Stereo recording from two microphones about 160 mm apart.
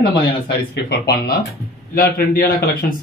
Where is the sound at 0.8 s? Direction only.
90° left.